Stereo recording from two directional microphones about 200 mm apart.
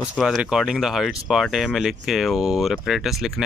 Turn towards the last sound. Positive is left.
turn(degrees=0)  # may be behind; listen again after turning